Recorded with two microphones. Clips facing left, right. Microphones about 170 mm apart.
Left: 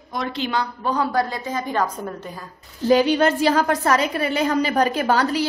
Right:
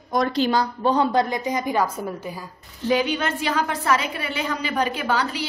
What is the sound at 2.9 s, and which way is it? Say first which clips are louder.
A woman's voice: left 6 dB; 35° left (ahead or behind).